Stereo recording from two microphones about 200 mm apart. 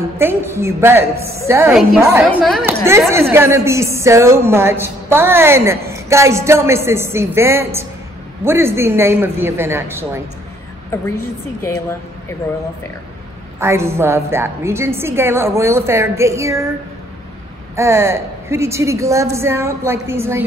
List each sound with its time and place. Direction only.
0.2 s a woman's voice: 10° right (ahead or behind)
2.0 s a woman's voice: centre (ahead or behind)
3.1 s a woman's voice: 10° right (ahead or behind)
13.6 s a woman's voice: 15° right (ahead or behind)
17.7 s a woman's voice: 15° right (ahead or behind)